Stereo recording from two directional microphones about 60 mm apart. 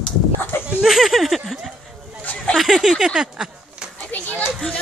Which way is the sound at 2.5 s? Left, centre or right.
Centre.